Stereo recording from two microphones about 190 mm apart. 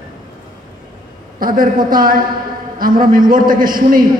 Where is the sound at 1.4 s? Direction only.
45° right (ahead or behind).